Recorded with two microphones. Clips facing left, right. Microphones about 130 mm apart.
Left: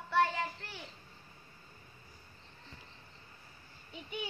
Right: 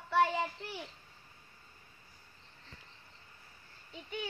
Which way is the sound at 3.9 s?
15° left (ahead or behind).